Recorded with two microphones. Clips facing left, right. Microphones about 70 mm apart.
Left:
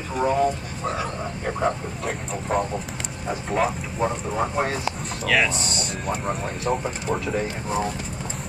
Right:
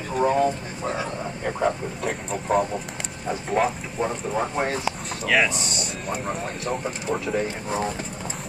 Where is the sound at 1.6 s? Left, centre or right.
Centre.